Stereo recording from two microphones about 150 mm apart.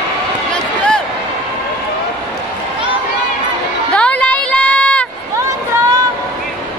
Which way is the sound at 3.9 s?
10° left (ahead or behind).